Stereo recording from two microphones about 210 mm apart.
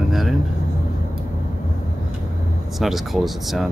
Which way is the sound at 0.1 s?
Centre (ahead or behind).